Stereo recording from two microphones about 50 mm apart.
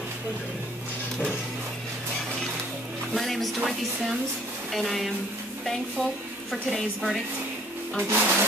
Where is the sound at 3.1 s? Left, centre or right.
Centre.